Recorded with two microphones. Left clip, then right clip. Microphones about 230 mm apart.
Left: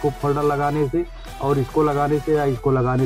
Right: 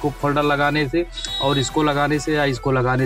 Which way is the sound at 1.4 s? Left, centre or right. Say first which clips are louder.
Even; right.